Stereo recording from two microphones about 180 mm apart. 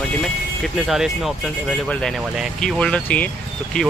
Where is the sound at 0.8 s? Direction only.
Centre (ahead or behind).